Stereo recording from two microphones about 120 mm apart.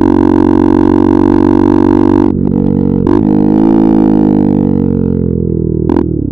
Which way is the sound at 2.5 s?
60° right (ahead or behind).